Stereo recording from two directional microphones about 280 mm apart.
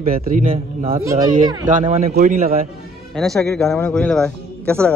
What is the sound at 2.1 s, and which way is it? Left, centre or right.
Speech, right.